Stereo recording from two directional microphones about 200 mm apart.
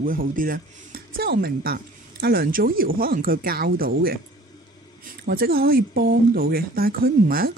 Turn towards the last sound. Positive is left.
turn(degrees=-45)  # may be behind; listen again after turning